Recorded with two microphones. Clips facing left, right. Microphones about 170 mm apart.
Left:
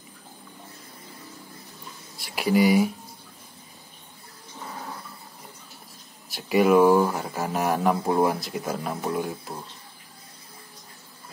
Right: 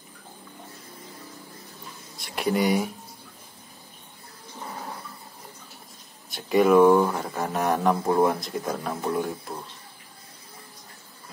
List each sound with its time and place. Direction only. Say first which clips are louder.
2.1 s speech: left 3 dB; 5° left (ahead or behind)
6.2 s speech: even; 5° left (ahead or behind)